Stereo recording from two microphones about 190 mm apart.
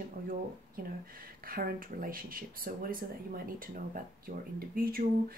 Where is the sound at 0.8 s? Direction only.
45° right (ahead or behind).